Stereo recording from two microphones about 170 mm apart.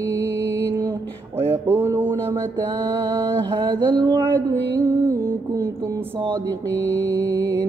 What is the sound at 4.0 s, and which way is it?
Speech, 30° right (ahead or behind).